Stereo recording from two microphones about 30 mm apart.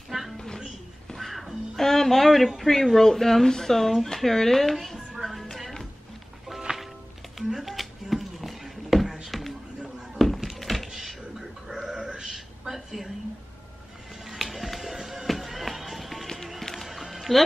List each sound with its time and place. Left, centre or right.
0.1 s music: centre
1.8 s a sound: centre
2.7 s a woman's voice: centre
3.0 s speech: centre
5.2 s music: centre
5.5 s music: centre
6.7 s music: right
7.6 s a sound: centre
11.7 s burping: centre
12.6 s a sound: centre
14.4 s music: centre
15.2 s music: centre